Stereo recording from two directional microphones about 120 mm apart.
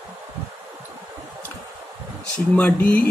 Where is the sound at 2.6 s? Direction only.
15° left (ahead or behind).